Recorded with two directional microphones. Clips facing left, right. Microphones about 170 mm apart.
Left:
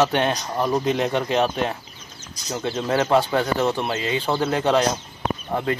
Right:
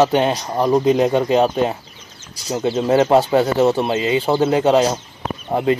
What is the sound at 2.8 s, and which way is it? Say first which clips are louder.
Speech: right 5 dB; 25° right (ahead or behind).